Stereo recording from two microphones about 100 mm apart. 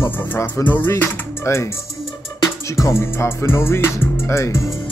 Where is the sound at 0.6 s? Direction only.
20° left (ahead or behind).